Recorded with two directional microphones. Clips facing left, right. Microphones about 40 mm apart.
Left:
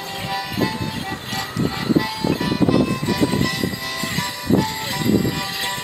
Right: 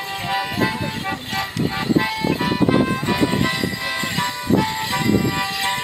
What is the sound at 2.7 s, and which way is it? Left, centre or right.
Music, right.